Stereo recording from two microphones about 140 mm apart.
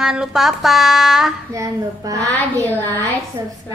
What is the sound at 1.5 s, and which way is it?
Speech, 25° right (ahead or behind).